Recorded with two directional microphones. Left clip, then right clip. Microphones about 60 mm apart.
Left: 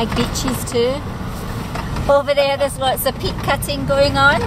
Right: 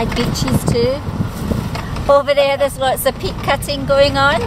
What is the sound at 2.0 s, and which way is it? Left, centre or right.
Speech, right.